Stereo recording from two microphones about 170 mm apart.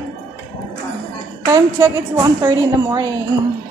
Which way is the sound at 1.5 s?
20° right (ahead or behind).